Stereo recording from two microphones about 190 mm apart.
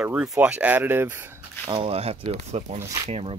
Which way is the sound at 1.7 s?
30° right (ahead or behind).